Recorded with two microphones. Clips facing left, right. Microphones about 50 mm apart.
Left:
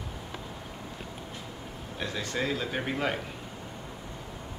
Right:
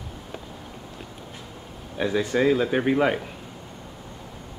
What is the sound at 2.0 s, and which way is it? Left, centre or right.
Speech, centre.